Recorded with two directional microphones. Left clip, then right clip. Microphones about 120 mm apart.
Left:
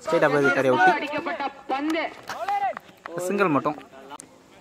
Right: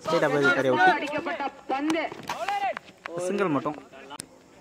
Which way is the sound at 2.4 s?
10° left (ahead or behind).